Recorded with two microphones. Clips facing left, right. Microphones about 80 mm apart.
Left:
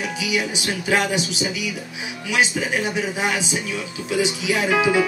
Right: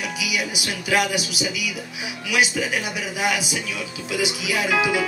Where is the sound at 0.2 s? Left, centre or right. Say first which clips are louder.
Left 4 dB; left.